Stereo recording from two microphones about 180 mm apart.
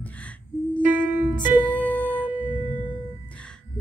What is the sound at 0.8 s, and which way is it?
Music, 10° right (ahead or behind).